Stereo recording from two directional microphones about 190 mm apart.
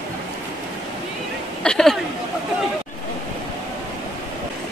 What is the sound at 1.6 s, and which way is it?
Speech, 5° left (ahead or behind).